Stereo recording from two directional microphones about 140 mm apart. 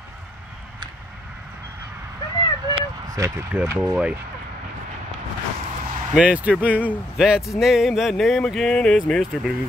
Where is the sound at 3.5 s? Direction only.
10° right (ahead or behind).